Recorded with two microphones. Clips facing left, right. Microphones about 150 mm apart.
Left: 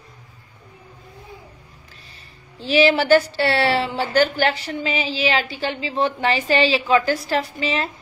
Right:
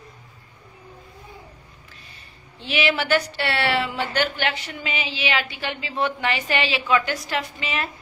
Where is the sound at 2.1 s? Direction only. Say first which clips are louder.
Left 2 dB; 35° left (ahead or behind).